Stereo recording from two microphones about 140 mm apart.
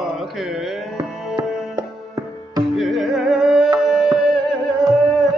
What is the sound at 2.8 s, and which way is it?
Music, centre (ahead or behind).